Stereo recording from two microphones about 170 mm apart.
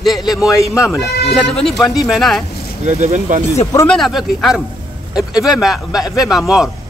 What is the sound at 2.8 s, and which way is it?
Speech, 40° right (ahead or behind).